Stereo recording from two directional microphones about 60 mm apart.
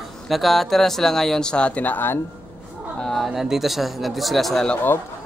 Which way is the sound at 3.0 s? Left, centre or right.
Centre.